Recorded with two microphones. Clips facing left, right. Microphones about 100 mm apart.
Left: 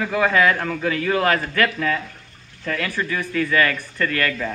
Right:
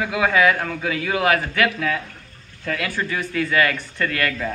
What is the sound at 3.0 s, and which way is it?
A man's voice, 25° right (ahead or behind).